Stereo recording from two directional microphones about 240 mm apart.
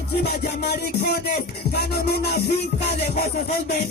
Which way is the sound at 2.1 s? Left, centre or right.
Left.